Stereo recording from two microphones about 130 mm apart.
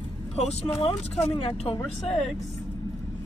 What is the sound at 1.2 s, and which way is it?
Speech, 50° left (ahead or behind).